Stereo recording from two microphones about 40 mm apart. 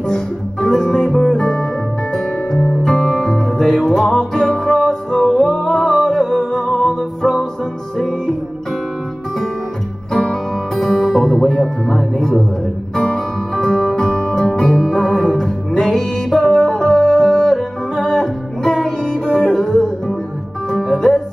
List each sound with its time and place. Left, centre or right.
0.1 s music: centre
5.4 s music: centre
10.8 s music: centre
19.2 s music: centre
19.5 s music: centre